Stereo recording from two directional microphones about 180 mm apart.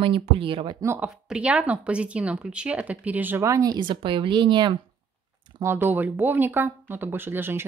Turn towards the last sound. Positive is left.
turn(degrees=-10)  # may be behind; listen again after turning